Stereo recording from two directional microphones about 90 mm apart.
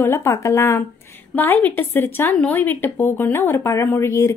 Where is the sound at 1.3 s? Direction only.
20° left (ahead or behind).